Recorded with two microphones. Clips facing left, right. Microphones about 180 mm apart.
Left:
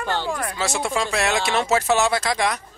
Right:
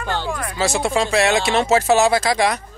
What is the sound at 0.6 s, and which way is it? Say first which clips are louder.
Speech: right 7 dB; 30° right (ahead or behind).